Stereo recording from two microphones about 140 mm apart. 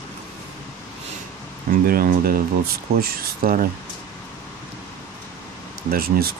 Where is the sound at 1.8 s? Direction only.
90° right.